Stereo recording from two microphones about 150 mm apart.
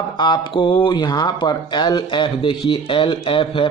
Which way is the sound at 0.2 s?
30° left (ahead or behind).